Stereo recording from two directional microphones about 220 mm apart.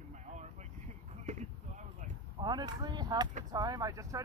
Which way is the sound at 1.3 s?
30° right (ahead or behind).